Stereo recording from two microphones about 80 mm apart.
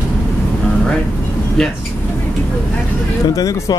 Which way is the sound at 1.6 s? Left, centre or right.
Centre.